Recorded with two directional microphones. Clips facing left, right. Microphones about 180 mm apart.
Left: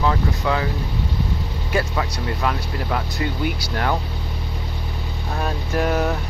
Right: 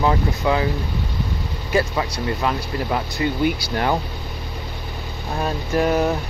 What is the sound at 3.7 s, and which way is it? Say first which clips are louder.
Speech: left 1 dB; 10° right (ahead or behind).